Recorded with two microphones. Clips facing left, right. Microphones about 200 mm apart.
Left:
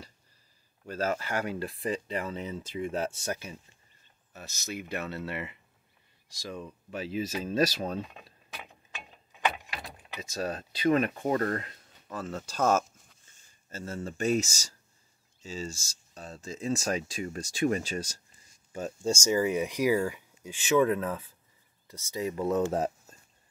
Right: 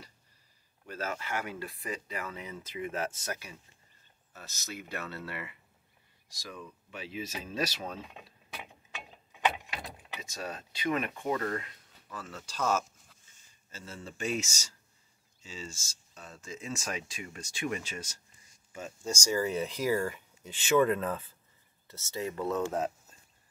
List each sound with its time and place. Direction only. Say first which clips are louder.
0.8 s speech: left 6 dB; 35° left (ahead or behind)
4.3 s speech: left 5 dB; 15° left (ahead or behind)
6.9 s speech: left 7 dB; 40° left (ahead or behind)
10.3 s speech: left 7 dB; 35° left (ahead or behind)
19.1 s speech: left 2 dB; 20° left (ahead or behind)